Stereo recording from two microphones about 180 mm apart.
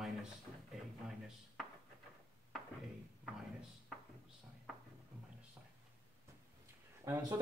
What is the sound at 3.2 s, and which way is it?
Speech, centre (ahead or behind).